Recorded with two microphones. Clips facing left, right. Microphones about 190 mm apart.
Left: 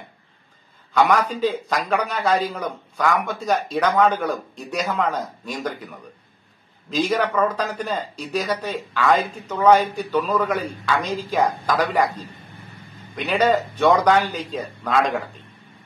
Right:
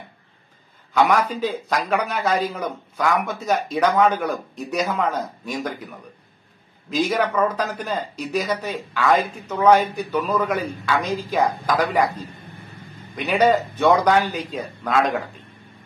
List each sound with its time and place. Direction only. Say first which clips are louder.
0.9 s a man's voice: even; 10° right (ahead or behind)
7.0 s a man's voice: even; 5° right (ahead or behind)
10.2 s a man's voice: even; 10° right (ahead or behind)
13.1 s a man's voice: right 1 dB; 10° right (ahead or behind)